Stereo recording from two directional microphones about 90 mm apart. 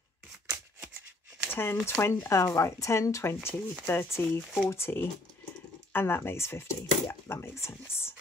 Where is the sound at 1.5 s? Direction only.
25° left (ahead or behind).